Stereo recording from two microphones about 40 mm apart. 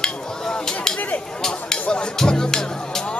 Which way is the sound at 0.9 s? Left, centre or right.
Left.